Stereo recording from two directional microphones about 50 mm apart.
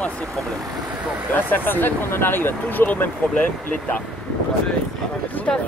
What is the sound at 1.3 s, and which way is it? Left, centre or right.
Speech, left.